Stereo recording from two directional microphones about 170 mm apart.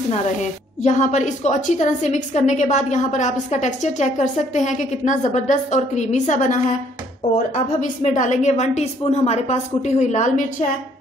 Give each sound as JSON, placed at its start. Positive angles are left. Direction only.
{"t": 0.8, "sound": "a woman's voice", "side_deg": 45}